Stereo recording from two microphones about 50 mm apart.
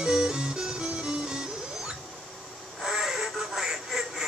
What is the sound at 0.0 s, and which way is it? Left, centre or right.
Music, centre.